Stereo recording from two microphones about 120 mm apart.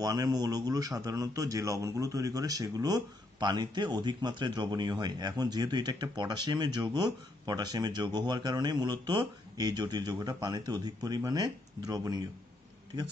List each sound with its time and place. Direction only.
0.0 s a man's voice: 30° right (ahead or behind)